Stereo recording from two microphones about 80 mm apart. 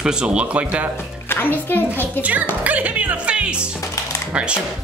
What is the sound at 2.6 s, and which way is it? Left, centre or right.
Speech, centre.